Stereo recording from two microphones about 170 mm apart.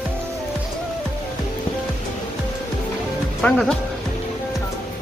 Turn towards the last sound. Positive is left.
turn(degrees=5)  # may be behind; listen again after turning